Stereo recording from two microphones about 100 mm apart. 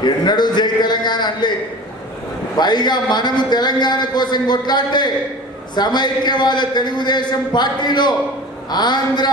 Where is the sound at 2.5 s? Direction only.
45° left (ahead or behind).